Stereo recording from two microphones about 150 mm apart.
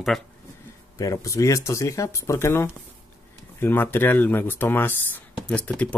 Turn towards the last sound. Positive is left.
turn(degrees=10)  # may be behind; listen again after turning